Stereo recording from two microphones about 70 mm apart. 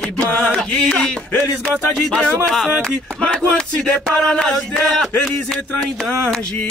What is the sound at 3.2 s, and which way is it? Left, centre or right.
Speech, centre.